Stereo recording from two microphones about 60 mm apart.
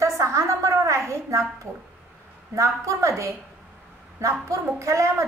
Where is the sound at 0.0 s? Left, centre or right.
Right.